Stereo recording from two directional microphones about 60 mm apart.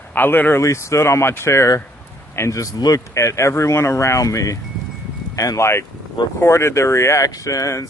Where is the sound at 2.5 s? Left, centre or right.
Left.